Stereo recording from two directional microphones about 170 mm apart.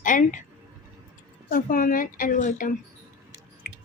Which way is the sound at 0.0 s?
50° left (ahead or behind).